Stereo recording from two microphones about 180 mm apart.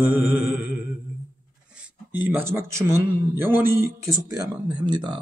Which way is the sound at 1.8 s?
10° right (ahead or behind).